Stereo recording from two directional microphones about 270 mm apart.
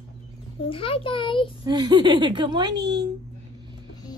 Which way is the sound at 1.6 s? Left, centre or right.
Centre.